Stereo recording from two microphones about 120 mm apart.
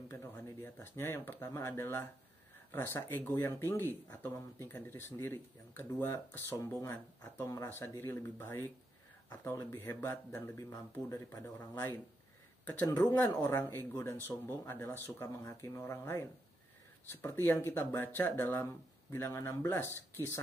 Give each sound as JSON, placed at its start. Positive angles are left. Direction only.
{"t": 0.1, "sound": "speech", "side_deg": 15}
{"t": 12.8, "sound": "speech", "side_deg": 30}